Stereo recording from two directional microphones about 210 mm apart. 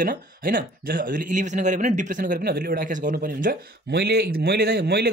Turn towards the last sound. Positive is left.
turn(degrees=-50)  # may be behind; listen again after turning